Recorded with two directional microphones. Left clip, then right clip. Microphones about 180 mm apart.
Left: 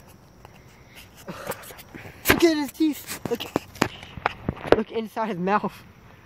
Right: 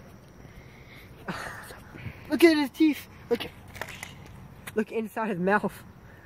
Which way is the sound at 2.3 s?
10° left (ahead or behind).